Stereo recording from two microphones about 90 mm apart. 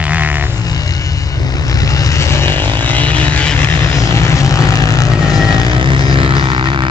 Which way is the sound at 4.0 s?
35° left (ahead or behind).